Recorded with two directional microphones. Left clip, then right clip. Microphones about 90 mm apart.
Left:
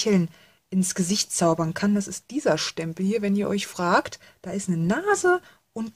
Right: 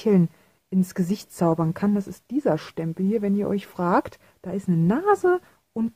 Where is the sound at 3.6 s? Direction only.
40° right (ahead or behind).